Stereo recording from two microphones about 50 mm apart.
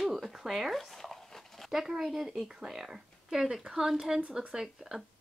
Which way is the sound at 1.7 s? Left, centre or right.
Centre.